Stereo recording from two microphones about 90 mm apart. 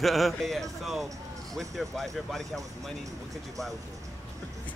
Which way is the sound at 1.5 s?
5° left (ahead or behind).